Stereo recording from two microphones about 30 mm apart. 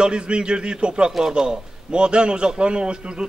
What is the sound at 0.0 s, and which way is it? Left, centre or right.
A man's voice, right.